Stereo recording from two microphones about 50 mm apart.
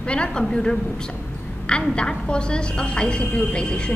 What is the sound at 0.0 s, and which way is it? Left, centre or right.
A woman's voice, left.